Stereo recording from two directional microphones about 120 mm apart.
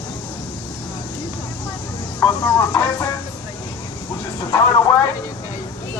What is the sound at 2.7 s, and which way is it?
Speech, 25° left (ahead or behind).